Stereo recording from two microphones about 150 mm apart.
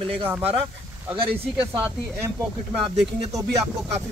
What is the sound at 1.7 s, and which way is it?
Speech, 10° right (ahead or behind).